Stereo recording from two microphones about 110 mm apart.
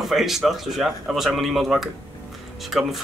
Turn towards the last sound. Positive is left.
turn(degrees=0)  # may be behind; listen again after turning